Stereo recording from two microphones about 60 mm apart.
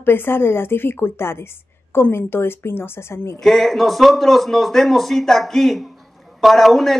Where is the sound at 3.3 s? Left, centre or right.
Centre.